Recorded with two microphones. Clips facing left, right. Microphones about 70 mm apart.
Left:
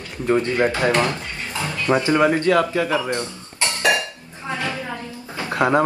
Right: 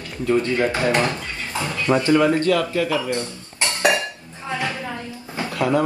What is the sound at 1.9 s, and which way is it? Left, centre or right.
Speech, left.